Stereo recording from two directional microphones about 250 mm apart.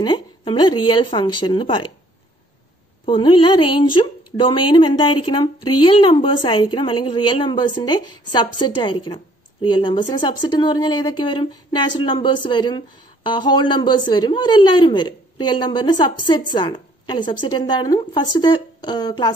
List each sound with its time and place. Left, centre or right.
0.0 s speech: centre
3.1 s a woman's voice: centre